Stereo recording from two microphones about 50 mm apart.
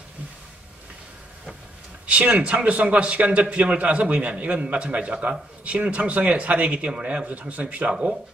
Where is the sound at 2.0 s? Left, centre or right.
Right.